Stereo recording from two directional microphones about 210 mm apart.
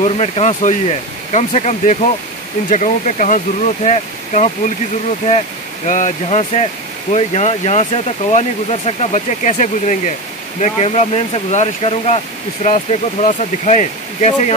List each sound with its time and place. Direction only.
0.0 s speech: 30° left (ahead or behind)
5.9 s speech: 35° left (ahead or behind)